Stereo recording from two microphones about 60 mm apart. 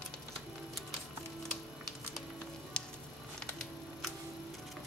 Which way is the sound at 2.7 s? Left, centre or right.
Centre.